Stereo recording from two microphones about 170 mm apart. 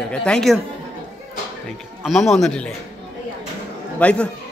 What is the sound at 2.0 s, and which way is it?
Speech, centre (ahead or behind).